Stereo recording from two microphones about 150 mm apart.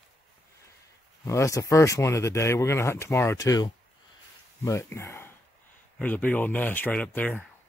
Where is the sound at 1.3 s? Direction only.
20° left (ahead or behind).